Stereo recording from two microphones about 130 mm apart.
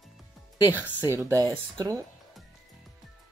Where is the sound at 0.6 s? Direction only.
15° right (ahead or behind).